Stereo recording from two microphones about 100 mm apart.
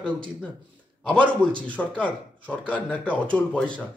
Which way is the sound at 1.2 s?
55° right (ahead or behind).